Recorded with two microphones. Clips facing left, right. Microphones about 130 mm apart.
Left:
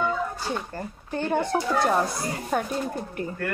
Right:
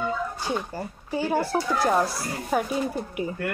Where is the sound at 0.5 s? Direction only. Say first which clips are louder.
Right 2 dB; 5° right (ahead or behind).